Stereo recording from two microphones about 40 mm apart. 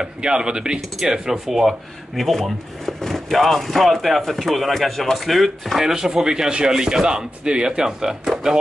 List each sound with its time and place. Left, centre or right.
0.0 s speech: right
2.1 s speech: centre